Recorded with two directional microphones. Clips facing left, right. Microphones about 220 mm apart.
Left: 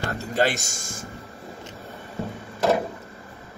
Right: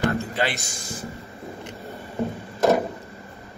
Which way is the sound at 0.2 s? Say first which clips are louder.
Left 3 dB; 45° left (ahead or behind).